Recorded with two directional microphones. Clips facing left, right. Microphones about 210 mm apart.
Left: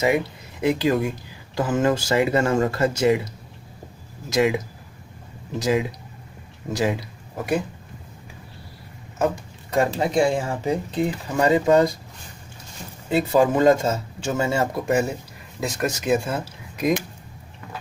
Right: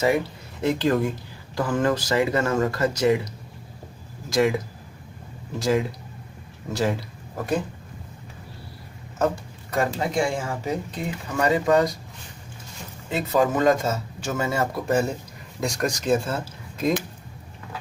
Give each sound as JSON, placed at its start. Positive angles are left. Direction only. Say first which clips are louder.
{"t": 0.0, "sound": "speech", "louder": "left 1 dB", "side_deg": 15}
{"t": 1.5, "sound": "speech", "louder": "left 2 dB", "side_deg": 20}
{"t": 4.3, "sound": "speech", "louder": "left 1 dB", "side_deg": 15}
{"t": 5.6, "sound": "speech", "louder": "left 1 dB", "side_deg": 15}
{"t": 9.7, "sound": "speech", "louder": "left 3 dB", "side_deg": 25}
{"t": 13.1, "sound": "speech", "louder": "left 3 dB", "side_deg": 30}
{"t": 14.9, "sound": "speech", "louder": "left 1 dB", "side_deg": 10}